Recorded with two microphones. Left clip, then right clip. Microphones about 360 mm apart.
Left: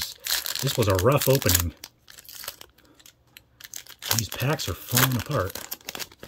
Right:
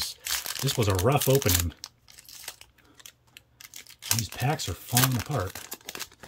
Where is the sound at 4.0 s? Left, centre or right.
Centre.